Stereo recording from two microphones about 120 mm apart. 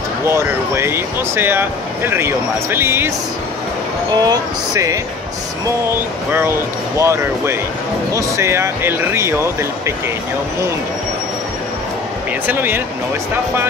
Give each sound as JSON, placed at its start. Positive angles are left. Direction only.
{"t": 0.3, "sound": "speech", "side_deg": -20}
{"t": 4.1, "sound": "speech", "side_deg": -35}
{"t": 7.0, "sound": "speech", "side_deg": -20}
{"t": 12.4, "sound": "speech", "side_deg": -15}